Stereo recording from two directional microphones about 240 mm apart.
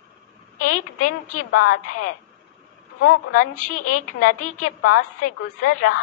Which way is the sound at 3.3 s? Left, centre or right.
Left.